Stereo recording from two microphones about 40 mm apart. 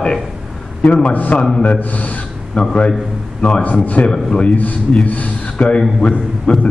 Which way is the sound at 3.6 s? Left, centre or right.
Left.